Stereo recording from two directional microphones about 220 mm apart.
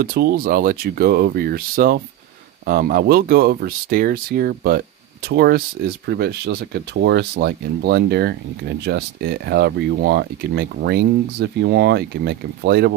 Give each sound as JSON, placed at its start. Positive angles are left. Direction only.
{"t": 0.0, "sound": "speech", "side_deg": -45}